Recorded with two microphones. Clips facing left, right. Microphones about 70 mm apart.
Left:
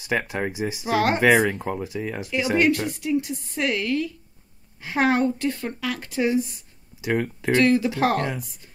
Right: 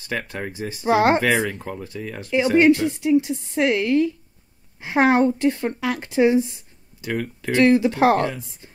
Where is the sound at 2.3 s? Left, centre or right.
Right.